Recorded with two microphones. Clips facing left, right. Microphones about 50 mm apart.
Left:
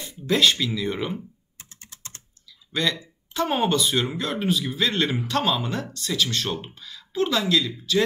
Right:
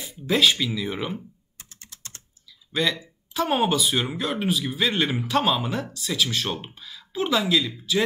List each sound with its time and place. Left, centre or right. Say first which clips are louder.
0.0 s speech: even; centre
1.6 s typing: left 1 dB; left
2.7 s speech: right 1 dB; centre